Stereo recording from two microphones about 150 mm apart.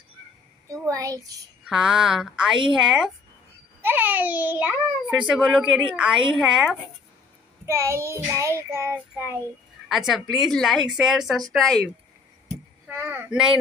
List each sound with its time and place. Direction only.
0.7 s child singing: 20° right (ahead or behind)
1.7 s a woman's voice: 5° right (ahead or behind)
7.6 s child singing: 20° right (ahead or behind)
9.8 s a woman's voice: centre (ahead or behind)
12.8 s a child's voice: 15° right (ahead or behind)